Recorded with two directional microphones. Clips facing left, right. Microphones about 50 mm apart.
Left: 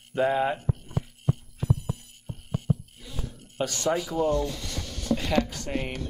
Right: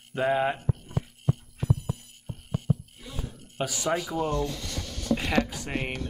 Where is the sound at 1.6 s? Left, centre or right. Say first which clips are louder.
Even; right.